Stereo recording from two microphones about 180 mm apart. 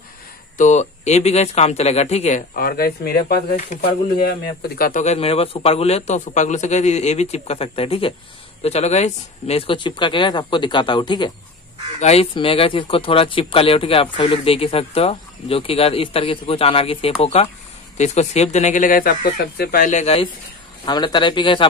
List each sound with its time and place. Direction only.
0.6 s speech: 40° left (ahead or behind); by 3.7 s 60° left (ahead or behind)
4.7 s speech: 50° left (ahead or behind)
20.8 s speech: 25° left (ahead or behind)